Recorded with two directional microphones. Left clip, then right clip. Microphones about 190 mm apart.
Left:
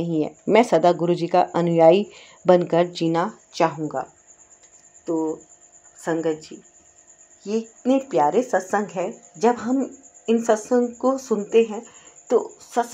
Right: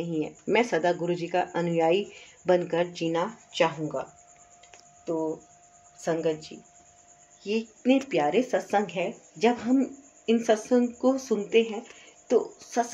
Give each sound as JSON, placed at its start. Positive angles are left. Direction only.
{"t": 0.0, "sound": "speech", "side_deg": 40}
{"t": 3.5, "sound": "speech", "side_deg": 25}
{"t": 7.4, "sound": "speech", "side_deg": 15}